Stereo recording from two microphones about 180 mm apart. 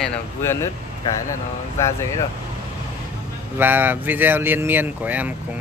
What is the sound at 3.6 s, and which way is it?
Speech, 10° right (ahead or behind).